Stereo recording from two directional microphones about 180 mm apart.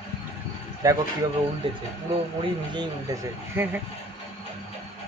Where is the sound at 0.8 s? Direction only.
20° right (ahead or behind).